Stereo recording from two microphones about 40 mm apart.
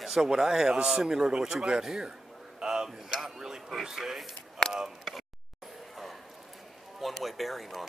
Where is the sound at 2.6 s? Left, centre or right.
Centre.